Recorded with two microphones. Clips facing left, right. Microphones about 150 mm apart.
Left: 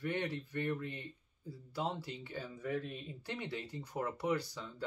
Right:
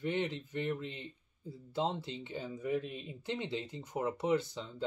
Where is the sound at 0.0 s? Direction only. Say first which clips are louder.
Right 3 dB; 20° right (ahead or behind).